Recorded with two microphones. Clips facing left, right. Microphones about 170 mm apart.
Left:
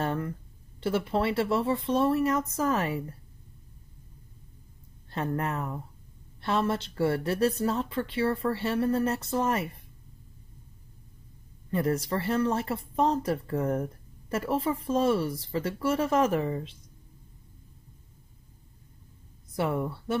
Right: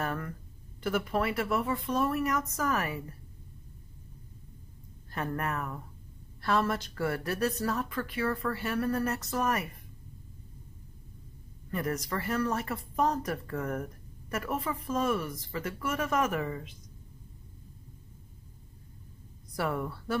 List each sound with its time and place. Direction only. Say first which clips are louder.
0.0 s a sound: left 4 dB; 25° left (ahead or behind)
0.7 s speech: left 3 dB; 30° left (ahead or behind)
5.1 s speech: left 3 dB; 25° left (ahead or behind)
11.7 s speech: left 5 dB; 30° left (ahead or behind)
19.5 s speech: left 3 dB; 25° left (ahead or behind)